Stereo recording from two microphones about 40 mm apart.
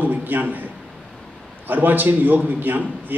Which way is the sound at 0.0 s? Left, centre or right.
Right.